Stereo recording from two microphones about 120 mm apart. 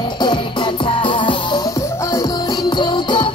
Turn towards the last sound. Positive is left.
turn(degrees=40)  # may be behind; listen again after turning